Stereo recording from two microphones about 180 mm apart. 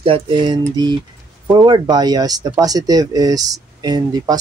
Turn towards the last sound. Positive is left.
turn(degrees=-20)  # may be behind; listen again after turning